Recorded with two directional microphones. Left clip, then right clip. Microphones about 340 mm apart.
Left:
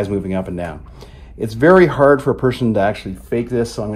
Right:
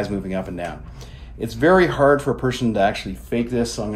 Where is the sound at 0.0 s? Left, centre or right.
Centre.